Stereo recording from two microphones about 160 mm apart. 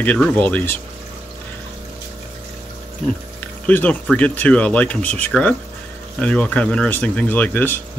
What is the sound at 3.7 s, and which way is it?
Speech, 10° left (ahead or behind).